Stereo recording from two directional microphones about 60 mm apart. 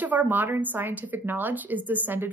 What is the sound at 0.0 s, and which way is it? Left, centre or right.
Speech, right.